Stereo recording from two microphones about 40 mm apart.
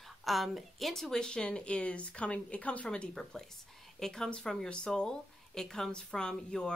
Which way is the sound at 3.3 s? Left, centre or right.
Centre.